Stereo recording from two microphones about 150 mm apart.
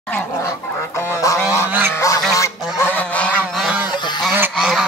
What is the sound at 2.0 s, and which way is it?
Goose, 20° left (ahead or behind).